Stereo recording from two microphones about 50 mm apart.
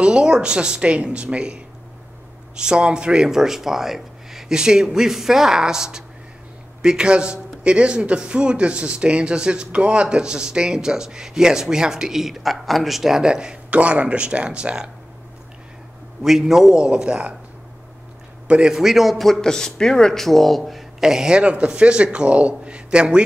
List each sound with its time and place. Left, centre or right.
0.0 s a man's voice: centre
13.7 s a man's voice: right
16.2 s a man's voice: centre
18.5 s a man's voice: centre
18.8 s a man's voice: centre
21.0 s a man's voice: centre